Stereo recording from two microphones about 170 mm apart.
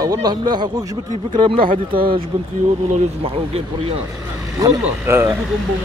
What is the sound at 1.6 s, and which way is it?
Speech, 55° right (ahead or behind).